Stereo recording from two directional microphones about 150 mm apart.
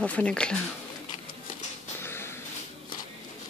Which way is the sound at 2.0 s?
15° left (ahead or behind).